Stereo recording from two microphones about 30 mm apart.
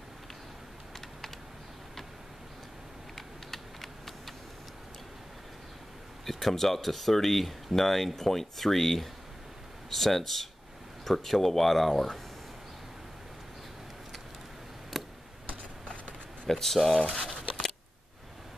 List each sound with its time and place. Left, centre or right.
3.2 s typing: centre
6.2 s speech: centre
14.9 s tick: centre
16.4 s speech: centre
17.1 s a sound: centre